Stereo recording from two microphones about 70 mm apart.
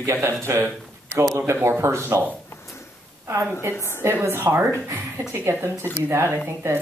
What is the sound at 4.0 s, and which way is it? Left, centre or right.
A man's voice, right.